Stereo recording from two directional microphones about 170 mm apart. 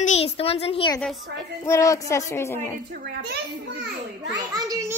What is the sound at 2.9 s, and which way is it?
Speech, 55° right (ahead or behind).